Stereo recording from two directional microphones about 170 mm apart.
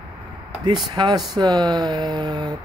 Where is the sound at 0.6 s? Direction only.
25° right (ahead or behind).